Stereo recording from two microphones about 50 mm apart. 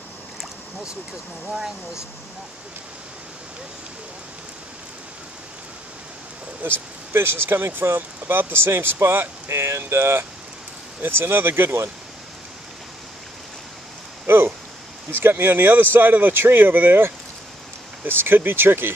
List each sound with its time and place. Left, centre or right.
6.6 s speech: right
7.2 s speech: right
14.2 s speech: right